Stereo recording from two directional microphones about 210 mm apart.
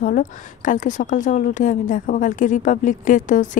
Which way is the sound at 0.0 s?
40° left (ahead or behind).